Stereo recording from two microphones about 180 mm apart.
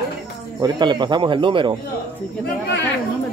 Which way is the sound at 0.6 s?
25° right (ahead or behind).